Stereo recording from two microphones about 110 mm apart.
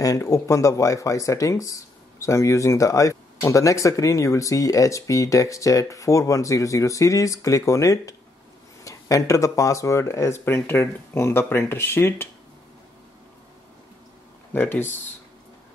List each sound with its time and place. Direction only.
0.0 s speech: 30° left (ahead or behind)
14.5 s speech: 20° left (ahead or behind)